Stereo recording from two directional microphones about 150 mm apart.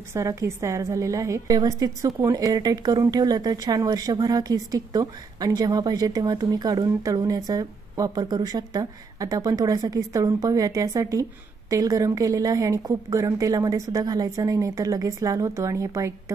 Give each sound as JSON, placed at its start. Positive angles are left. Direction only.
{"t": 0.1, "sound": "a woman's voice", "side_deg": -20}